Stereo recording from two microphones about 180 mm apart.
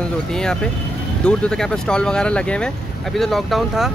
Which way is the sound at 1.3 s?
5° left (ahead or behind).